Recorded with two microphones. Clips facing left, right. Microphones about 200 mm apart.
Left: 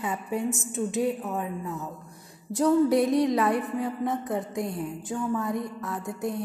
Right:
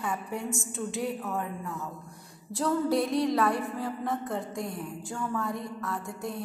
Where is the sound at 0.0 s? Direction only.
20° left (ahead or behind).